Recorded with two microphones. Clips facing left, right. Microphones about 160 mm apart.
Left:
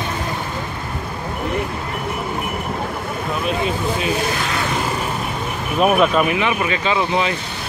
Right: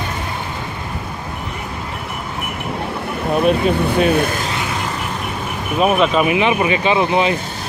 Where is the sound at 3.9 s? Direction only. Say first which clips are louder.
Right 5 dB; 60° right (ahead or behind).